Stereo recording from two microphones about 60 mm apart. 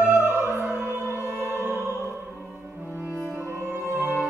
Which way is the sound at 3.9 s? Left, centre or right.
Right.